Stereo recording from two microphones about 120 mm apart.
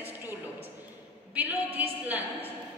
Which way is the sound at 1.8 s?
10° right (ahead or behind).